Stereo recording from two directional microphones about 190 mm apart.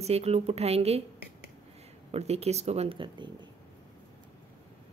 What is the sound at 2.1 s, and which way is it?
Speech, 35° right (ahead or behind).